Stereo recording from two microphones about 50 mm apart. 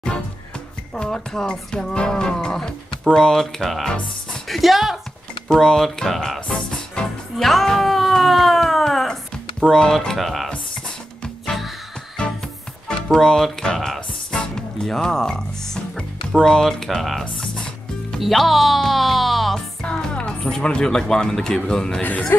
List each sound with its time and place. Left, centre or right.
0.9 s speech: centre
5.5 s speech: centre
7.3 s a sound: centre
12.2 s music: centre
16.3 s speech: centre
18.2 s speech: centre
19.8 s speech: centre
22.3 s speech: left